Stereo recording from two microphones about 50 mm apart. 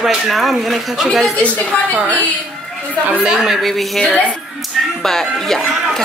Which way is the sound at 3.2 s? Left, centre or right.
Centre.